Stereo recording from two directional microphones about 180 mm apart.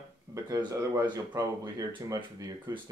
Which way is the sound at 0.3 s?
20° right (ahead or behind).